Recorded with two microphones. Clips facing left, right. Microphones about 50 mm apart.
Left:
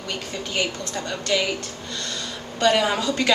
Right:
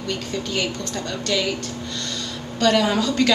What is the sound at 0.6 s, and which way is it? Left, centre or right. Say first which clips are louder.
Speech: left 3 dB; centre.